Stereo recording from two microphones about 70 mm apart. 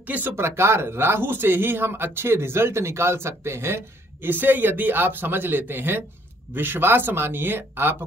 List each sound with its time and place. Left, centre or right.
0.0 s speech: right
0.3 s speech: right